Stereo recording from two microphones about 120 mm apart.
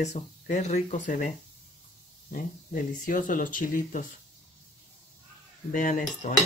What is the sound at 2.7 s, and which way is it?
Speech, 90° left.